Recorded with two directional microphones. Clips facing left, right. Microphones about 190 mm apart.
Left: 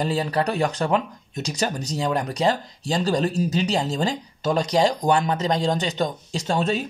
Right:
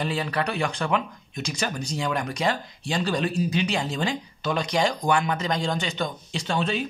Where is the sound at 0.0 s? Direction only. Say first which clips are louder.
Left 4 dB; 35° left (ahead or behind).